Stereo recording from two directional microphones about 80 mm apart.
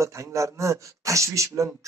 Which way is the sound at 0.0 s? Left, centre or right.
Right.